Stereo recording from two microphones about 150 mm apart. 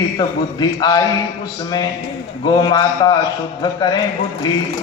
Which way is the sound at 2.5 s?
30° left (ahead or behind).